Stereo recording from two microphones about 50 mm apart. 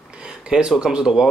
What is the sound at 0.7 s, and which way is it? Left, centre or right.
Speech, centre.